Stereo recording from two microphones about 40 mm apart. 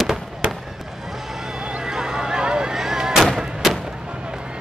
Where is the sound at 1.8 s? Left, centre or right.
Centre.